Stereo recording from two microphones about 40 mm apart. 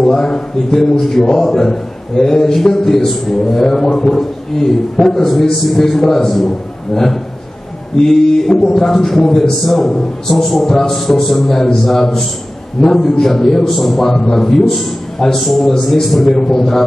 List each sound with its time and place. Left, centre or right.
0.1 s a man's voice: centre